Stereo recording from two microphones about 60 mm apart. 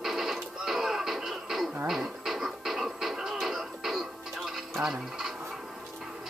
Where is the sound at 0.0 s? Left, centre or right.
Centre.